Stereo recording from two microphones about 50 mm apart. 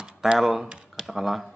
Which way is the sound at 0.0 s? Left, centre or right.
Centre.